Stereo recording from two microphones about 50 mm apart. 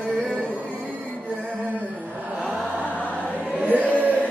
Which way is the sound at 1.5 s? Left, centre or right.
Left.